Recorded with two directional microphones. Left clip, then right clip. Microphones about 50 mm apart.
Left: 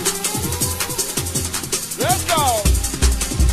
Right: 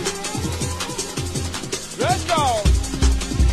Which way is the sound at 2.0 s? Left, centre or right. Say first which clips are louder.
Left 1 dB; right.